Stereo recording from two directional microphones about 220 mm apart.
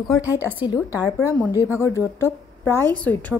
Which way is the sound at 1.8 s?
10° left (ahead or behind).